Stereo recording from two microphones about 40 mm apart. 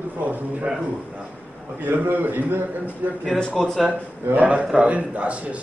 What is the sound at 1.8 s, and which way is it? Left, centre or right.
A man's voice, right.